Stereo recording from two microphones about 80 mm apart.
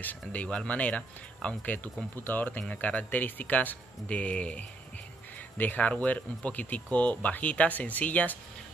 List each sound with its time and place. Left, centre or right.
0.3 s speech: centre
2.2 s speech: left